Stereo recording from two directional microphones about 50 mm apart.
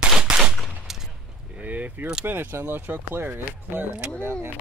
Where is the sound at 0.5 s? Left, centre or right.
Centre.